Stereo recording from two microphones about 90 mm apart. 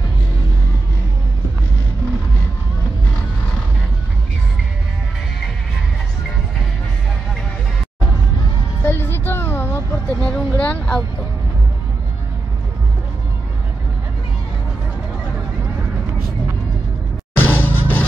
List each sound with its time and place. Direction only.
8.8 s vehicle: 25° left (ahead or behind)
10.2 s a sound: 15° left (ahead or behind)
17.4 s music: 20° left (ahead or behind)